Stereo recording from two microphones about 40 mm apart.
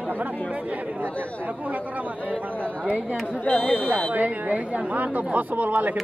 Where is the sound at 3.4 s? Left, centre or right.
Left.